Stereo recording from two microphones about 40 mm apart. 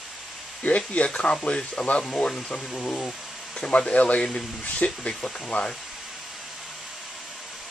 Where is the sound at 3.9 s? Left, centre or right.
Left.